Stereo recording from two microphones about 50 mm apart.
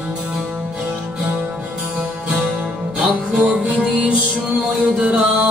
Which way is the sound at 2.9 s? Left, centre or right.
Right.